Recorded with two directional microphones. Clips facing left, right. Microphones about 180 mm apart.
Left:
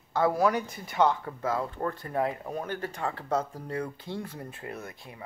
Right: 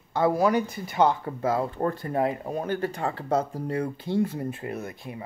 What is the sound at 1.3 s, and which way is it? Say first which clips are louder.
Speech: right 5 dB; 25° right (ahead or behind).